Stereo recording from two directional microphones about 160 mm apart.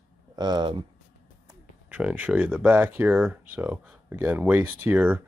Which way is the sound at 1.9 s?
10° right (ahead or behind).